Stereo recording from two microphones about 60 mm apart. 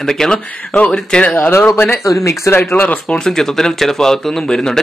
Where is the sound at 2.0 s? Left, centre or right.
Left.